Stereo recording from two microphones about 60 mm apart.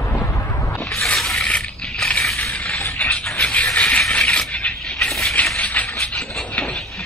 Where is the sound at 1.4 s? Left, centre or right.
Centre.